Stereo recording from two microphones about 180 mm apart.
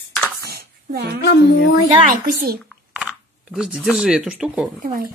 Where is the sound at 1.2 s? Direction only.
70° left (ahead or behind).